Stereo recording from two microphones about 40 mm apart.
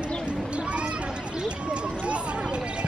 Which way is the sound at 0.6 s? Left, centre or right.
Right.